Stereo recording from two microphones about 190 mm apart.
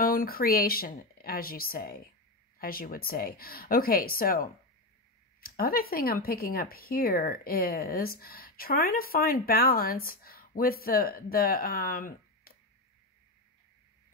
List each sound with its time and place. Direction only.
0.0 s speech: 50° left (ahead or behind)